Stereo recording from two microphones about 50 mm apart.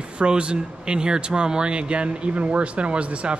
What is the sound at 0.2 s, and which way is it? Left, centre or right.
Speech, right.